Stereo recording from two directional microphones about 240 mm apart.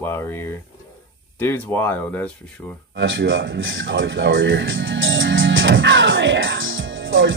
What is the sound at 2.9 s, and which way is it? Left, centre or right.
Music, right.